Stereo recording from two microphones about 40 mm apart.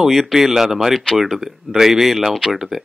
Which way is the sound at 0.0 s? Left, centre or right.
Centre.